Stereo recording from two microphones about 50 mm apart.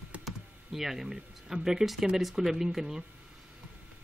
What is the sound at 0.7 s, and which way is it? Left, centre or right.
Speech, centre.